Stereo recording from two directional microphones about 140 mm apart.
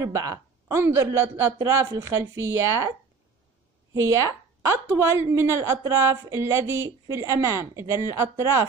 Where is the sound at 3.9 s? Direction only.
20° right (ahead or behind).